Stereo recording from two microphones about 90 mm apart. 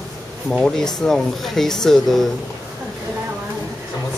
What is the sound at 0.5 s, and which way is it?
Speech, 5° left (ahead or behind).